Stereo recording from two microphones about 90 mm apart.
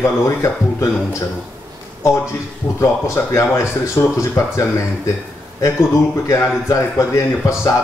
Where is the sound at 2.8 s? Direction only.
35° left (ahead or behind).